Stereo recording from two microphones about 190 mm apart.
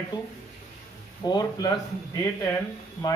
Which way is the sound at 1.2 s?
20° left (ahead or behind).